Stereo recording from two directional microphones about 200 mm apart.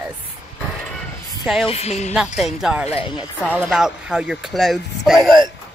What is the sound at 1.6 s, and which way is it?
Speech, 30° left (ahead or behind).